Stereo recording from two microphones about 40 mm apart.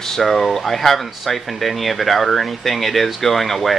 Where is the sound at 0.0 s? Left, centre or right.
Centre.